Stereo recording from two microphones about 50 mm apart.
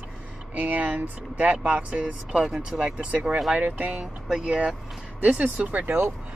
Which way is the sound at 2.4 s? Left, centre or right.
Centre.